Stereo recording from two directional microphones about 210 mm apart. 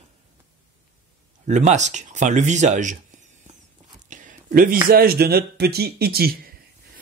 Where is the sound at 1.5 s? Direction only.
35° right (ahead or behind).